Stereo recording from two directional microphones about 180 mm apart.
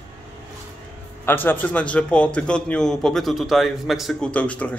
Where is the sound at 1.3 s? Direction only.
10° left (ahead or behind).